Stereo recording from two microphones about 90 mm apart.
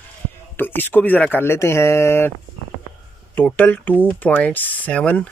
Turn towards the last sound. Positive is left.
turn(degrees=15)  # may be behind; listen again after turning